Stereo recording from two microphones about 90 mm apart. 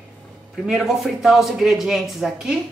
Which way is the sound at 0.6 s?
5° right (ahead or behind).